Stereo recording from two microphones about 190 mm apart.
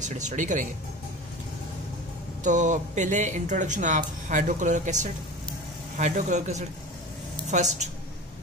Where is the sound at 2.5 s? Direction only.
40° right (ahead or behind).